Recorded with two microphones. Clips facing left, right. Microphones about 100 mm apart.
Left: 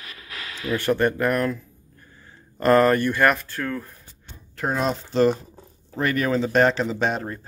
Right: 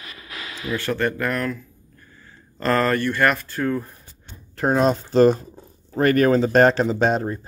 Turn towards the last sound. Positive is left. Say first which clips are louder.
# right 4 dB
turn(degrees=-40)  # may be behind; listen again after turning